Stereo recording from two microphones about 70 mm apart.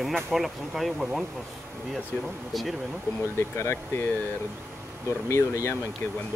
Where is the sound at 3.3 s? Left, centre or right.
Left.